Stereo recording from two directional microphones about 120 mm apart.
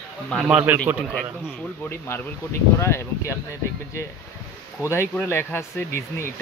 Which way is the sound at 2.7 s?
25° left (ahead or behind).